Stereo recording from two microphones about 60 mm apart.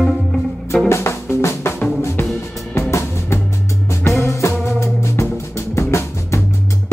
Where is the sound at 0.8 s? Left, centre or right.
Left.